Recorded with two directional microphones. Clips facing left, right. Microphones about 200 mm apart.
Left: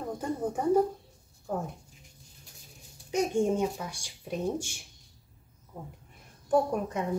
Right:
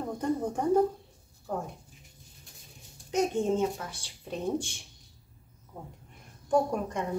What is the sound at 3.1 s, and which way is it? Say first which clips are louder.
Speech: even; 10° left (ahead or behind).